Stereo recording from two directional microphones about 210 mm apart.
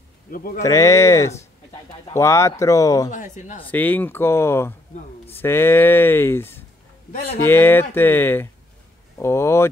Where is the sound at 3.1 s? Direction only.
35° left (ahead or behind).